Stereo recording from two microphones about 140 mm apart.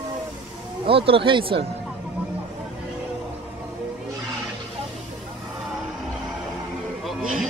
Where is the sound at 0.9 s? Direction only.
40° right (ahead or behind).